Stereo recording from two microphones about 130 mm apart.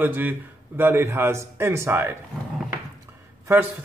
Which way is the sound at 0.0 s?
15° right (ahead or behind).